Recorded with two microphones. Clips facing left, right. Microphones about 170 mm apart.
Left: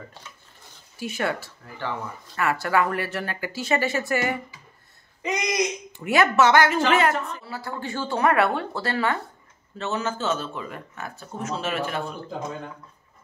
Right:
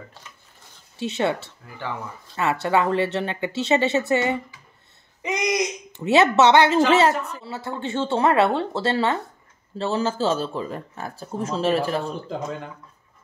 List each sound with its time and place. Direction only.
0.9 s a woman's voice: 25° right (ahead or behind)